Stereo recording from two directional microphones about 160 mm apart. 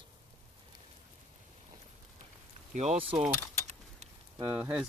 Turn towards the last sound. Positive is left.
turn(degrees=-10)  # may be behind; listen again after turning